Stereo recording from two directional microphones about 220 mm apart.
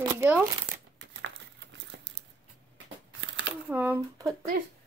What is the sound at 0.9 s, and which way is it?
Crumpling, 55° right (ahead or behind).